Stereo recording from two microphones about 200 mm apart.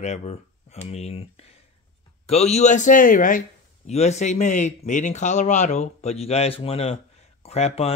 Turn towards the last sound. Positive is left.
turn(degrees=30)  # may be behind; listen again after turning